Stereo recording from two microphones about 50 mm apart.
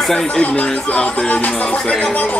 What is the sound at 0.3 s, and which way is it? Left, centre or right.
Speech, left.